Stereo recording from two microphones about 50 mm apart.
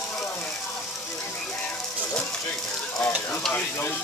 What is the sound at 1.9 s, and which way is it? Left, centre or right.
Music, left.